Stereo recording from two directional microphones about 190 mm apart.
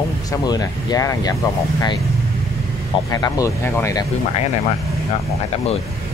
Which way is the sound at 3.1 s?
20° left (ahead or behind).